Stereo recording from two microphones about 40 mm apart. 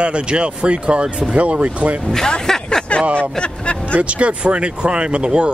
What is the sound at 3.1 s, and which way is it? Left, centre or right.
Speech, left.